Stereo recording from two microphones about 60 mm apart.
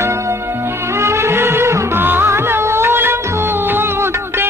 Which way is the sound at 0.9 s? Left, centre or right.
Right.